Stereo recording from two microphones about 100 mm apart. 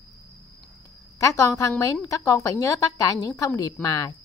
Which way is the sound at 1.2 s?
30° left (ahead or behind).